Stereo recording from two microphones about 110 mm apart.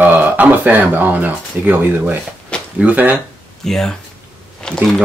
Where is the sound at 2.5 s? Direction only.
10° left (ahead or behind).